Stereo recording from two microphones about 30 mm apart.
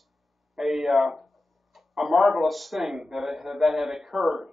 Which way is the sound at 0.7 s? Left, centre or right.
Centre.